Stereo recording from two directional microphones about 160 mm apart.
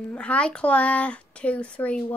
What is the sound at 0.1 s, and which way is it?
Speech, 5° left (ahead or behind).